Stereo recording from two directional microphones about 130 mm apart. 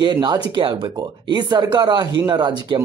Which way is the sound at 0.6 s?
40° right (ahead or behind).